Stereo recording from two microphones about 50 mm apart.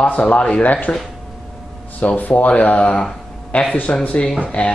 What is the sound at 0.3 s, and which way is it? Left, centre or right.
Speech, left.